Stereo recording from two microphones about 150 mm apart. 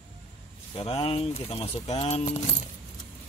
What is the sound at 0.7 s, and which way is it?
Speech, 40° left (ahead or behind).